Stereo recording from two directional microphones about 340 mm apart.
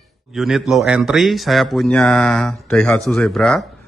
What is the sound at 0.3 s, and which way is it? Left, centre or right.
A man's voice, centre.